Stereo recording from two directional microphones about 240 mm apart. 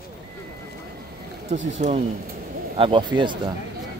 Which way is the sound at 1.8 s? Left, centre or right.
Right.